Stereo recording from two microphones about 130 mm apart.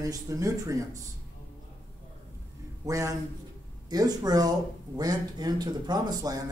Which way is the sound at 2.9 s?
25° right (ahead or behind).